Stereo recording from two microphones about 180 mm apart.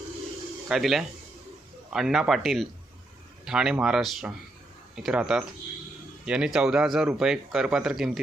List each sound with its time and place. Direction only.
0.7 s speech: centre (ahead or behind)